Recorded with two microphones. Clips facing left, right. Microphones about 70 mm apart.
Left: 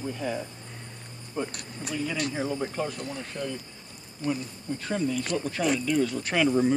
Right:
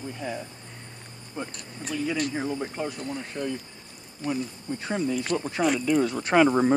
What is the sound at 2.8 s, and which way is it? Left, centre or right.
Speech, centre.